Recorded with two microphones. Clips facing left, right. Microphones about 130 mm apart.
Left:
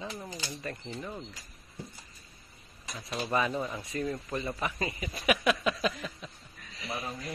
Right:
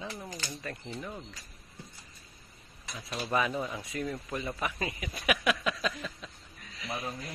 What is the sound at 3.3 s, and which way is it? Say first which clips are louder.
Speech: even; centre (ahead or behind).